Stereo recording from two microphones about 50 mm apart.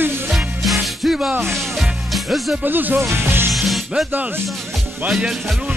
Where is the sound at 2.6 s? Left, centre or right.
Right.